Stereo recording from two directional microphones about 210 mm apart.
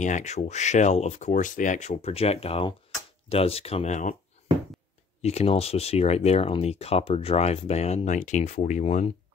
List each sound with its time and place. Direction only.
0.0 s speech: 35° left (ahead or behind)
5.2 s speech: 30° left (ahead or behind)